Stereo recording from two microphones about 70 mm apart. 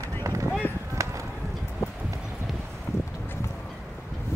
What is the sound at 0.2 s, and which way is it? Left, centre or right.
Clip-clop, right.